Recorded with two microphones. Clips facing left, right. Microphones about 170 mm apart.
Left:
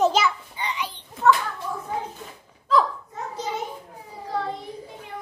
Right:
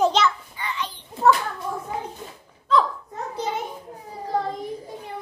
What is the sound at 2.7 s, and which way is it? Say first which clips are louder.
Hiccup: even; centre (ahead or behind).